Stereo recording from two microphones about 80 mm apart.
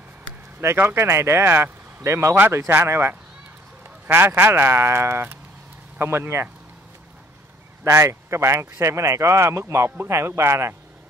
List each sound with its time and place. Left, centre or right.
0.6 s speech: right
7.8 s speech: right